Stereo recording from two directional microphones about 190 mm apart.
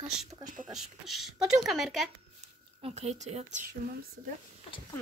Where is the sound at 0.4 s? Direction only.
40° right (ahead or behind).